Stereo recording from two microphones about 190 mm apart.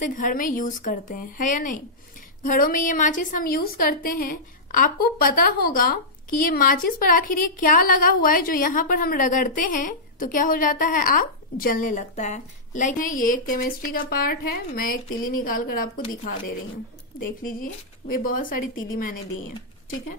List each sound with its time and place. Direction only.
0.0 s a woman's voice: 45° left (ahead or behind)
17.4 s a woman's voice: 45° left (ahead or behind)